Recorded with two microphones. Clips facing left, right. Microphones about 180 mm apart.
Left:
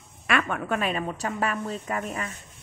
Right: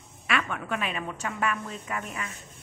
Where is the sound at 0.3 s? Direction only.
50° left (ahead or behind).